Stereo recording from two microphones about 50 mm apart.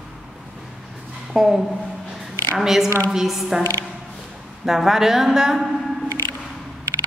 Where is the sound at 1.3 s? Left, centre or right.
Centre.